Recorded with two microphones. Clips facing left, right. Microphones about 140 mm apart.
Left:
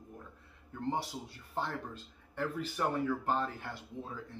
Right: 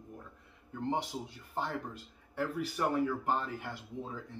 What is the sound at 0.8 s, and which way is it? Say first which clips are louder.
Speech: right 1 dB; 20° right (ahead or behind).